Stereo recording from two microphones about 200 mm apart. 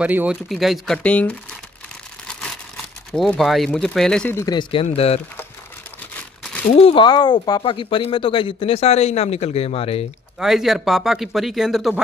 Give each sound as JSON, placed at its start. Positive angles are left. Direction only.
{"t": 0.0, "sound": "speech", "side_deg": -5}
{"t": 3.1, "sound": "speech", "side_deg": 0}
{"t": 6.1, "sound": "crumpling", "side_deg": 5}
{"t": 6.7, "sound": "speech", "side_deg": 30}
{"t": 10.4, "sound": "speech", "side_deg": 0}